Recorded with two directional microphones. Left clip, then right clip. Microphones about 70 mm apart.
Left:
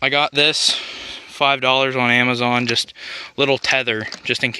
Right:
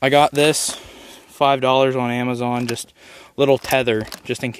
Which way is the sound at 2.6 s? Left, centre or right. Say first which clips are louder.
Left 7 dB; right.